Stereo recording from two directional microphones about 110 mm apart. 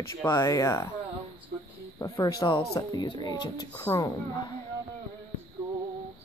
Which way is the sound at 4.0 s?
40° left (ahead or behind).